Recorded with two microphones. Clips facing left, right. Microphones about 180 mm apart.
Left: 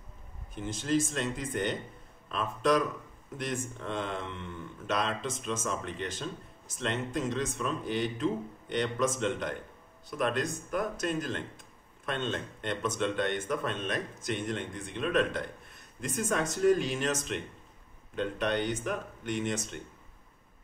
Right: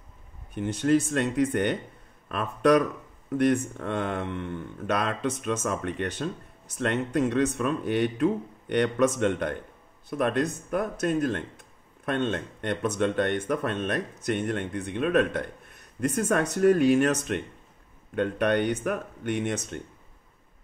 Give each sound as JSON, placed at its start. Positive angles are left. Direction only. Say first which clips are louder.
{"t": 0.6, "sound": "speech", "louder": "right 6 dB", "side_deg": -65}